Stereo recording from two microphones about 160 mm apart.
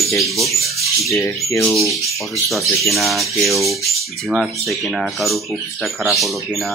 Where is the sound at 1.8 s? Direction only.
Centre (ahead or behind).